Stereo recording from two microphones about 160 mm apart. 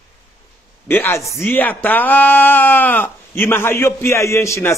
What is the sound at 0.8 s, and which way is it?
Speech, 10° left (ahead or behind).